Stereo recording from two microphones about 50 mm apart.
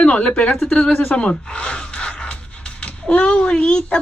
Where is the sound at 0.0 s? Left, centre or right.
Left.